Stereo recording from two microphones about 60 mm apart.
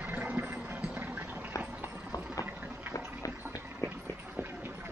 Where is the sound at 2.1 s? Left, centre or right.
Left.